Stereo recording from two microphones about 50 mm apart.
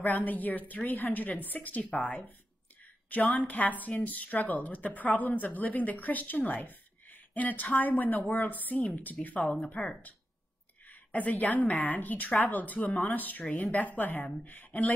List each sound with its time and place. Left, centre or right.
0.0 s a woman's voice: left
10.9 s a woman's voice: left